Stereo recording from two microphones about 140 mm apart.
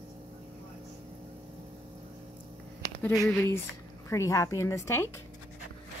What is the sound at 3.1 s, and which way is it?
A woman's voice, 20° left (ahead or behind).